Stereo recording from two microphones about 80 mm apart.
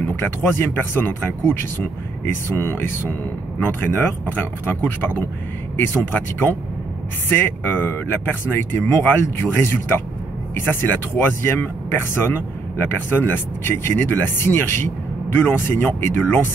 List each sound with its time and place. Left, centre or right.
0.0 s speech: left